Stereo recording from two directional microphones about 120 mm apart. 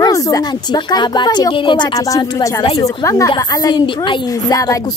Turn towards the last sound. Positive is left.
turn(degrees=30)  # may be behind; listen again after turning